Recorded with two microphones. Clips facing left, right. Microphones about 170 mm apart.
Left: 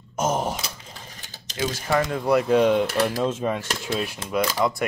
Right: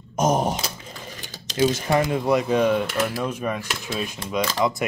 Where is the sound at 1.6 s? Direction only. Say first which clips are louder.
Right 4 dB; 25° right (ahead or behind).